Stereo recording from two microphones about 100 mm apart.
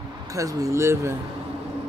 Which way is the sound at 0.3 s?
35° right (ahead or behind).